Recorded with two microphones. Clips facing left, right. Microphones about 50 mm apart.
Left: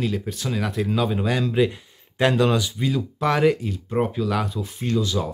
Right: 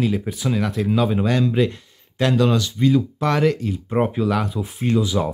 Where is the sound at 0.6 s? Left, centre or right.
Centre.